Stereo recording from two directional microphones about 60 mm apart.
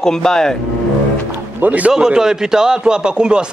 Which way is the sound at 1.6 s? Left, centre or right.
Right.